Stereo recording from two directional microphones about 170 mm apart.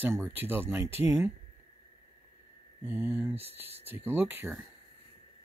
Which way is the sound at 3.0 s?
5° right (ahead or behind).